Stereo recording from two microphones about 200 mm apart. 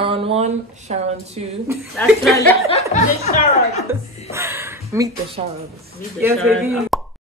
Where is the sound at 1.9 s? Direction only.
5° left (ahead or behind).